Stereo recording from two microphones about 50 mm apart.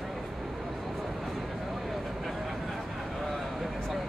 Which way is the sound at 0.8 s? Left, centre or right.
Centre.